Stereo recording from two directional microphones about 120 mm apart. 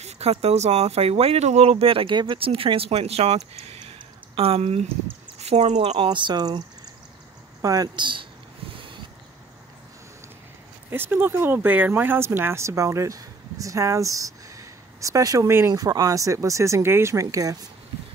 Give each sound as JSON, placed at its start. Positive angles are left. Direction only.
{"t": 0.0, "sound": "speech", "side_deg": -60}
{"t": 6.0, "sound": "speech", "side_deg": -40}
{"t": 7.6, "sound": "speech", "side_deg": -30}
{"t": 10.9, "sound": "speech", "side_deg": -15}